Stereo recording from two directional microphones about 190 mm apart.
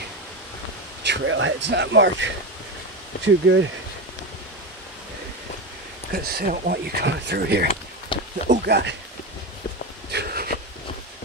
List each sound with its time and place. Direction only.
1.0 s speech: 75° right (ahead or behind)
3.4 s speech: 75° right (ahead or behind)
6.1 s speech: 55° right (ahead or behind)
8.1 s a sound: 25° left (ahead or behind)
8.6 s speech: 60° right (ahead or behind)
10.1 s a sound: 55° right (ahead or behind)